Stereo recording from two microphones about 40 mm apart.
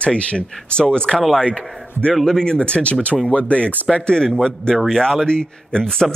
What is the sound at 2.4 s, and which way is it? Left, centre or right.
Speech, left.